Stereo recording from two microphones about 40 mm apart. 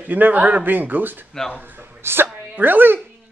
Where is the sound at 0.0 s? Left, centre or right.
Right.